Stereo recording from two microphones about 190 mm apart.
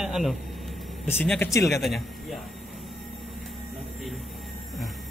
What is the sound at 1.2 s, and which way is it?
Speech, 10° left (ahead or behind).